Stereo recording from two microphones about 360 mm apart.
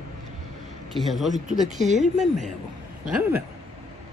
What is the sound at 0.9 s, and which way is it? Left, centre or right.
Speech, centre.